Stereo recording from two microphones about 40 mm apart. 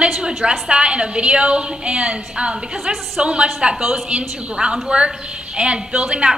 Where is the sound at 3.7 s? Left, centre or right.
Centre.